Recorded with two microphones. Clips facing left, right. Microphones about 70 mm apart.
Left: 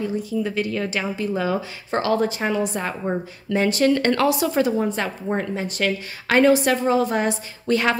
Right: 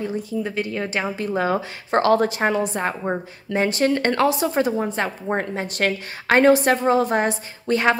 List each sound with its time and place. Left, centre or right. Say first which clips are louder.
0.0 s speech: left 1 dB; right
3.0 s speech: even; right
7.6 s a woman's voice: right 1 dB; right